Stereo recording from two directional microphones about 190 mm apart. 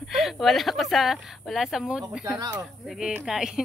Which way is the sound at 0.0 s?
Centre (ahead or behind).